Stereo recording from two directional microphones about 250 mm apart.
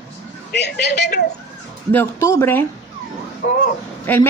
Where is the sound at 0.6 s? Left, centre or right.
Left.